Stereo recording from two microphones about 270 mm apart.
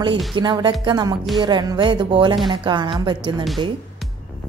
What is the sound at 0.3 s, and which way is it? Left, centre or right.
Speech, centre.